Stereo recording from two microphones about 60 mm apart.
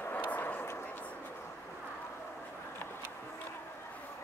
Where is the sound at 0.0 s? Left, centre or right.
Left.